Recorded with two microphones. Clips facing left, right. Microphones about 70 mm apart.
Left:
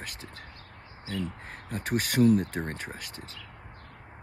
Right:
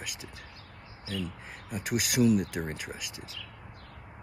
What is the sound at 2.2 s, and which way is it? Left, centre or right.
Speech, left.